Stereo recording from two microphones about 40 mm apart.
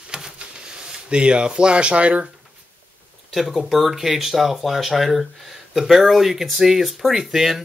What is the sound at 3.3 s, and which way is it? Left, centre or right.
Speech, centre.